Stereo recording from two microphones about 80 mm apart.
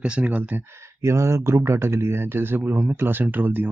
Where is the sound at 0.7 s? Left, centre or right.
Right.